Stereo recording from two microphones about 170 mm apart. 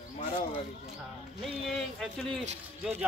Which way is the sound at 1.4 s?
Centre (ahead or behind).